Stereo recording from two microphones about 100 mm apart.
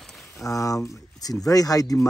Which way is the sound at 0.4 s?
35° left (ahead or behind).